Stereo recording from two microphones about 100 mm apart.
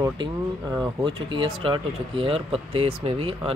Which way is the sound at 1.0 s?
55° right (ahead or behind).